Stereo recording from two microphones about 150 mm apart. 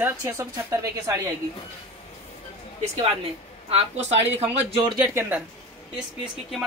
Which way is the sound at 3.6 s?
45° right (ahead or behind).